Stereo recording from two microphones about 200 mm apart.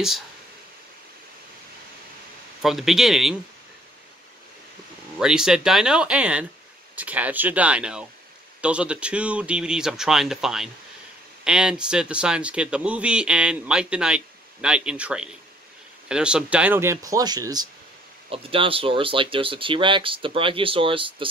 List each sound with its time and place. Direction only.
2.6 s speech: centre (ahead or behind)
5.2 s speech: 5° right (ahead or behind); by 21.3 s 25° right (ahead or behind)